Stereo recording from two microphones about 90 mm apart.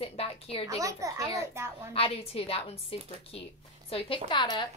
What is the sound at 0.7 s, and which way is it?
A child's voice, 40° right (ahead or behind).